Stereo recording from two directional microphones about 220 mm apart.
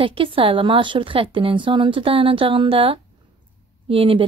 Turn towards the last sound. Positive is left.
turn(degrees=-25)  # may be behind; listen again after turning